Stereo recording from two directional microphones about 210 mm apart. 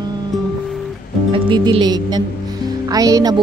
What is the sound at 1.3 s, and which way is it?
Speech, 20° right (ahead or behind).